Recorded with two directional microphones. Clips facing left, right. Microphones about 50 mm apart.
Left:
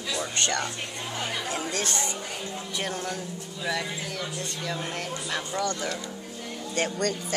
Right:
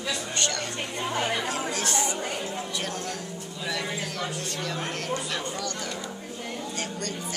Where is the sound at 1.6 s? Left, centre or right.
Centre.